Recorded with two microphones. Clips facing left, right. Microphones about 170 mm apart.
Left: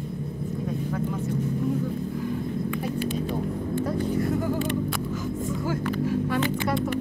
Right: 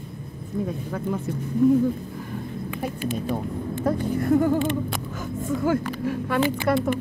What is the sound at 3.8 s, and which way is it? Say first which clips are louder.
Vehicle: right 2 dB; 55° right (ahead or behind).